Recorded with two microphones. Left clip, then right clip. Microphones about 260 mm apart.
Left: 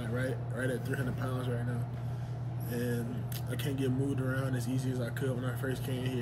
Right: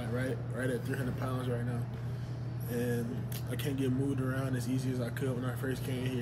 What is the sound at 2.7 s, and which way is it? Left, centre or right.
A man's voice, centre.